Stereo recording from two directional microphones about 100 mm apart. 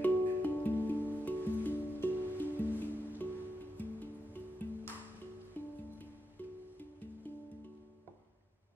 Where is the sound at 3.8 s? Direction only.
20° left (ahead or behind).